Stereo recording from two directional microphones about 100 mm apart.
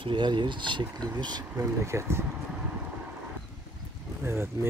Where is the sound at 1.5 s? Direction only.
30° right (ahead or behind).